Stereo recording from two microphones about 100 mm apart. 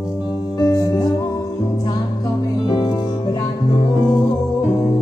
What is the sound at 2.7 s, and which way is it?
Music, 40° left (ahead or behind).